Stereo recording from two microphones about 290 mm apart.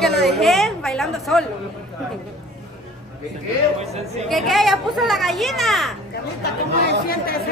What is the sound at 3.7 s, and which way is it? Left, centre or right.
Speech, right.